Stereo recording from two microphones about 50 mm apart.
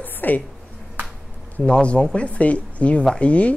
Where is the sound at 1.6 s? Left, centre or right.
Centre.